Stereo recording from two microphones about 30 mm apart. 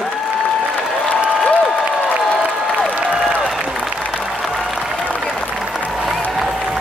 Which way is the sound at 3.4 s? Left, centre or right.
Right.